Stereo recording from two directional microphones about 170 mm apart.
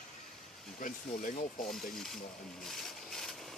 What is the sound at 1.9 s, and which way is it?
Speech, centre (ahead or behind).